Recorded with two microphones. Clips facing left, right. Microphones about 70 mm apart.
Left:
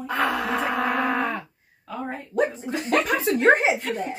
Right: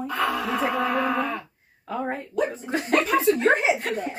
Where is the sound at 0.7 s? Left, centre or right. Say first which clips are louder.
Even; left.